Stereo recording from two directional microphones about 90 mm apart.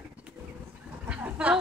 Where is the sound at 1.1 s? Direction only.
15° right (ahead or behind).